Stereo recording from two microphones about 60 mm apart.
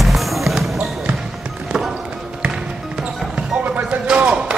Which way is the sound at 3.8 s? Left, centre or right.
Right.